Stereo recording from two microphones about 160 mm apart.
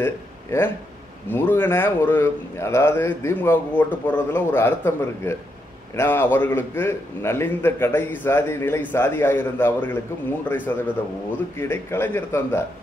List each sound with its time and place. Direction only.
0.0 s a man's voice: 15° left (ahead or behind)